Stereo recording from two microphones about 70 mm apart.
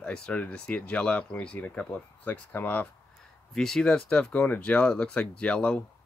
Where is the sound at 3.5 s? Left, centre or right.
Centre.